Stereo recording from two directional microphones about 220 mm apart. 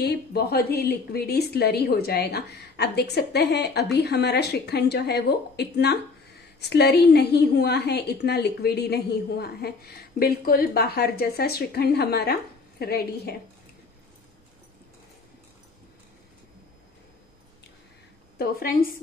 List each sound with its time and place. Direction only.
0.0 s a woman's voice: 45° left (ahead or behind)
18.4 s a woman's voice: 45° left (ahead or behind)